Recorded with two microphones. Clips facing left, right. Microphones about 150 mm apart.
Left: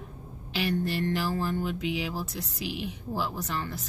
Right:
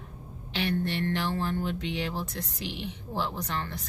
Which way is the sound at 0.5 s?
5° left (ahead or behind).